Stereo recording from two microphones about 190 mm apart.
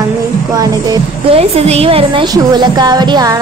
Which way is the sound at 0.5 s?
20° right (ahead or behind).